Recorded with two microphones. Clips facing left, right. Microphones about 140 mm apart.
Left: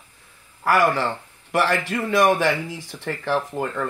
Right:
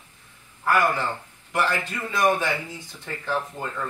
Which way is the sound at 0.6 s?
85° left.